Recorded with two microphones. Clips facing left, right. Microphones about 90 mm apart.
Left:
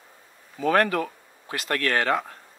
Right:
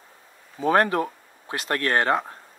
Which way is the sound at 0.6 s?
25° right (ahead or behind).